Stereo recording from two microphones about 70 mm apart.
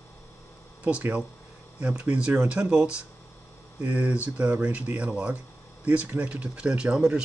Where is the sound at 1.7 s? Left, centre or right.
Centre.